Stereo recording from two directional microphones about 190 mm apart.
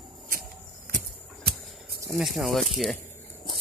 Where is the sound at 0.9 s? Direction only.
55° right (ahead or behind).